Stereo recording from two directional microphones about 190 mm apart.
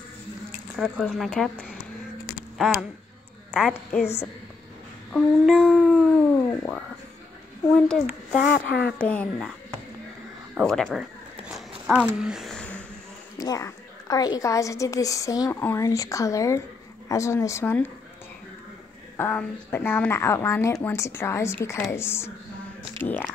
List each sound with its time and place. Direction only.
0.7 s babbling: centre (ahead or behind)
3.5 s babbling: 5° left (ahead or behind)
5.1 s babbling: centre (ahead or behind)
7.7 s babbling: 5° left (ahead or behind)
8.5 s speech: 60° left (ahead or behind)
9.0 s a woman's voice: 5° left (ahead or behind)
10.7 s a sound: centre (ahead or behind)
13.4 s a woman's voice: 15° left (ahead or behind)
19.1 s a woman's voice: 10° left (ahead or behind)